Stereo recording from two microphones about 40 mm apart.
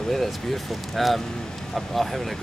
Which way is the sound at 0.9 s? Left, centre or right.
Centre.